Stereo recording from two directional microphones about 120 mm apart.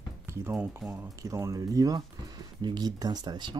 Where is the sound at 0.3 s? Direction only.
20° right (ahead or behind).